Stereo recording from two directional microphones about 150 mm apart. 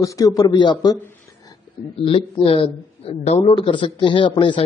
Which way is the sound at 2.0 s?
40° left (ahead or behind).